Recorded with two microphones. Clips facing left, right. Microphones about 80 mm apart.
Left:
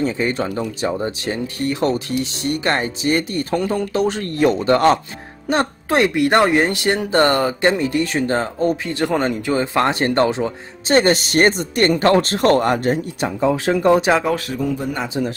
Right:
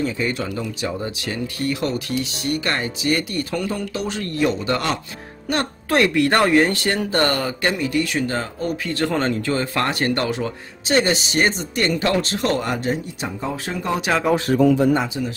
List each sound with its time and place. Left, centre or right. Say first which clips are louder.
0.0 s speech: left 3 dB; left
5.5 s speech: left 3 dB; left
8.9 s speech: left 2 dB; centre
10.9 s speech: left 4 dB; left
13.7 s speech: left 9 dB; left
14.1 s speech: left 4 dB; centre
14.5 s speech: right 7 dB; right
15.2 s speech: left 4 dB; left